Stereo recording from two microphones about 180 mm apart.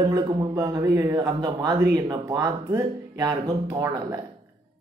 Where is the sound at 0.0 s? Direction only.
20° right (ahead or behind).